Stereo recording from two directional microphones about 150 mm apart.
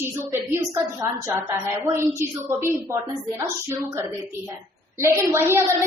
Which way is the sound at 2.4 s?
15° right (ahead or behind).